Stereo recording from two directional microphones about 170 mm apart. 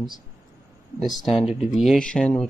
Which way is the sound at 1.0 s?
Centre (ahead or behind).